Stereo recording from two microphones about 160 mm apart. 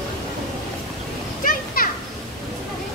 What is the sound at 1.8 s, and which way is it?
Children playing, 65° left (ahead or behind).